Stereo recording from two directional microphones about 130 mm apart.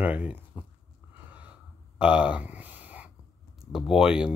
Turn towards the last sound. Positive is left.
turn(degrees=-5)  # may be behind; listen again after turning